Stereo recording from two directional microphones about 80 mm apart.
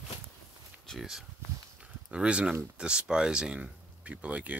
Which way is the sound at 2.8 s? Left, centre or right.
Centre.